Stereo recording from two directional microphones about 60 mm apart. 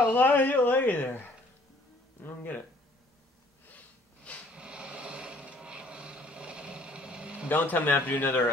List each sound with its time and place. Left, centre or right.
0.1 s speech: left
3.6 s snort: left
4.5 s a sound: centre
7.4 s speech: left